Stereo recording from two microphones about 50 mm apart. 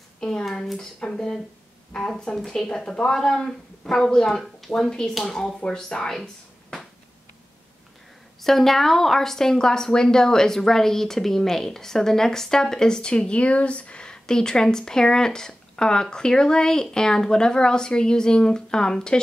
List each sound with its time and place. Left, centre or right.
0.2 s speech: centre
0.5 s a woman's voice: centre
6.2 s a sound: centre
8.4 s a woman's voice: centre